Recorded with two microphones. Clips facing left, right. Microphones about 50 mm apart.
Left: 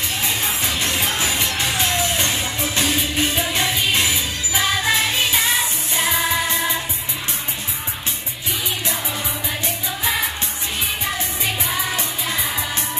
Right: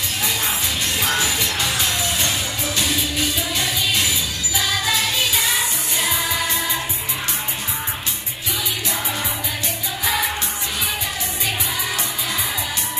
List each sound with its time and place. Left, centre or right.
0.8 s music: left